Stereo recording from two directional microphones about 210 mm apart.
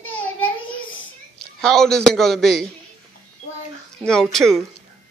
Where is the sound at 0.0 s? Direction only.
70° left (ahead or behind).